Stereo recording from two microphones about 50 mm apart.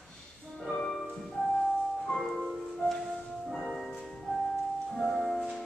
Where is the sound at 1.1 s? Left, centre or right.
Centre.